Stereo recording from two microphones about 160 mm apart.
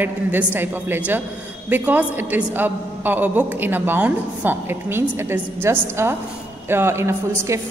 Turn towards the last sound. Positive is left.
turn(degrees=-15)  # may be behind; listen again after turning